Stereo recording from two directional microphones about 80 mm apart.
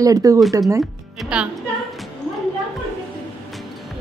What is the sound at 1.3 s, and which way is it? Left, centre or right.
Speech, centre.